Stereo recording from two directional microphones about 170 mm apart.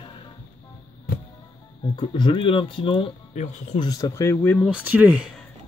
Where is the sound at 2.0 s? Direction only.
30° left (ahead or behind); by 4.6 s 10° left (ahead or behind).